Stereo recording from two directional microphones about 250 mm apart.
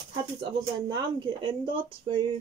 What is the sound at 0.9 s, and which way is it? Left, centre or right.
Speech, centre.